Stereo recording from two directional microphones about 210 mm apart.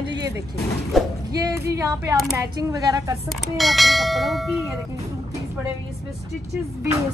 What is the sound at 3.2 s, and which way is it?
Speech, centre (ahead or behind).